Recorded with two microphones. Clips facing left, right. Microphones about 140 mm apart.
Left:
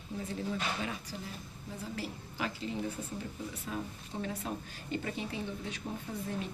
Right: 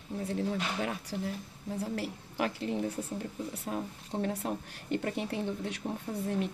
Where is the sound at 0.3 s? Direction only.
65° right (ahead or behind).